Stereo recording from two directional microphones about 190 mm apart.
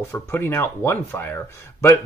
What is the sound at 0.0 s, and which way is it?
Speech, 15° left (ahead or behind).